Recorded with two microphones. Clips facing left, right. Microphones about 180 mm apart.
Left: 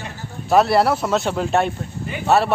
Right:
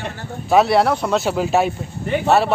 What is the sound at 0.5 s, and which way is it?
Speech, centre (ahead or behind).